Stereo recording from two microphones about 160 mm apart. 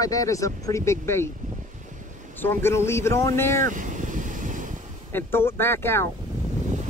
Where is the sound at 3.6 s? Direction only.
55° right (ahead or behind).